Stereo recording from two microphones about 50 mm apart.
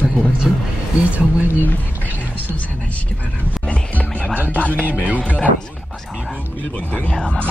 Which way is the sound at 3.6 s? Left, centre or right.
Left.